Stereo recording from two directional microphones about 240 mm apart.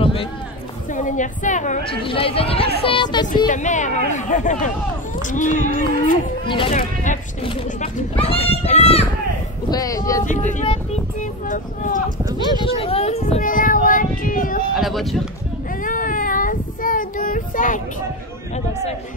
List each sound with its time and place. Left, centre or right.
0.0 s run: left
0.9 s speech: left
3.4 s speech: left
6.4 s speech: left
6.7 s speech: left
9.7 s speech: centre
10.7 s speech: left
12.3 s speech: centre
12.6 s speech: left
14.8 s speech: centre
15.8 s child singing: left